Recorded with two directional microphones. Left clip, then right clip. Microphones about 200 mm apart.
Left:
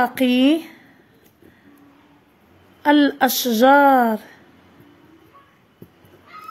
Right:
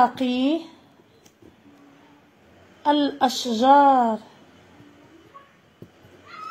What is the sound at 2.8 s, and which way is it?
A woman's voice, 30° left (ahead or behind).